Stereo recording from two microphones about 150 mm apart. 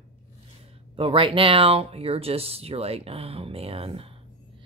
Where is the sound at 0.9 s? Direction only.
35° right (ahead or behind).